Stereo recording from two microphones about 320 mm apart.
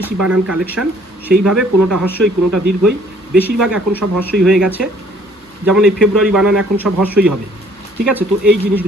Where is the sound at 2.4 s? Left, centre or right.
Right.